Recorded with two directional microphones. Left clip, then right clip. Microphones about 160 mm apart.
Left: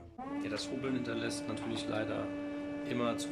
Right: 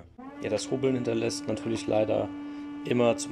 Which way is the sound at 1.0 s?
40° right (ahead or behind).